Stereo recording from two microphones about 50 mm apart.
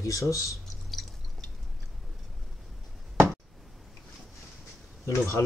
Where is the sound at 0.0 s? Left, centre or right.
Left.